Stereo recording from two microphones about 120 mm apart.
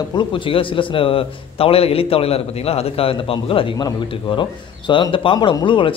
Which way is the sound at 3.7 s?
40° left (ahead or behind).